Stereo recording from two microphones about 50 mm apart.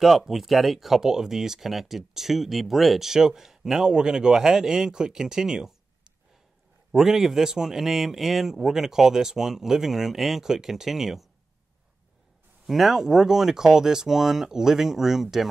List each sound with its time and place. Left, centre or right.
0.0 s speech: centre
6.9 s speech: centre
12.6 s speech: centre